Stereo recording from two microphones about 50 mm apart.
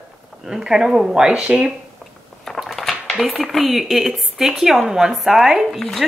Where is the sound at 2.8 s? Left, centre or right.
Centre.